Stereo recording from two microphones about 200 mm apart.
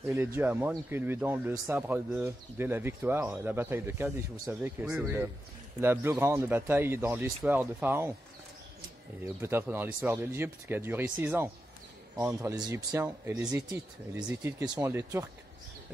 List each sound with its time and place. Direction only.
0.1 s speech: 10° right (ahead or behind)
9.2 s speech: 10° right (ahead or behind)